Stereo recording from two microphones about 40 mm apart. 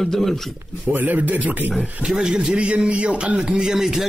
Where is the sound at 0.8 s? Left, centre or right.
Right.